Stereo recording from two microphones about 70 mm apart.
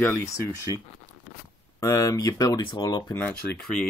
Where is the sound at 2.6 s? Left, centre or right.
Left.